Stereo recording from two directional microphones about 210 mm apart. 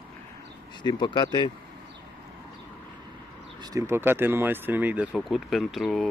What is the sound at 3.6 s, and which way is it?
Speech, 15° right (ahead or behind).